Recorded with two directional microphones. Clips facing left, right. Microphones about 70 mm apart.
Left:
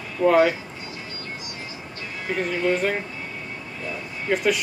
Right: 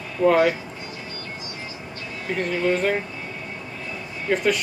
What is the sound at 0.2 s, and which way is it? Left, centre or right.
Speech, centre.